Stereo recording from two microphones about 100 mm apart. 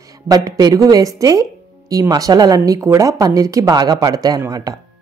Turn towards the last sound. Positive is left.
turn(degrees=-40)  # may be behind; listen again after turning